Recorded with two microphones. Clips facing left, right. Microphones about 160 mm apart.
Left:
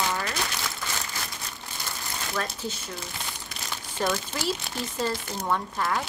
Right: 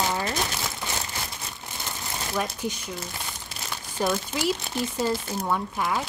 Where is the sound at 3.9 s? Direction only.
5° right (ahead or behind).